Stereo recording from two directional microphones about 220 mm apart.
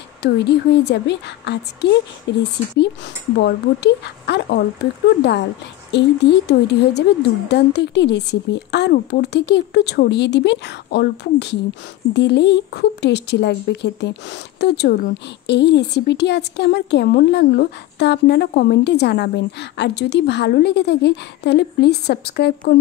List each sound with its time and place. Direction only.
0.2 s a woman's voice: 50° left (ahead or behind)
5.9 s a woman's voice: 50° left (ahead or behind)